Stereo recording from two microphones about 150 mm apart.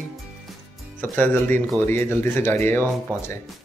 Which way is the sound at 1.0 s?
15° left (ahead or behind).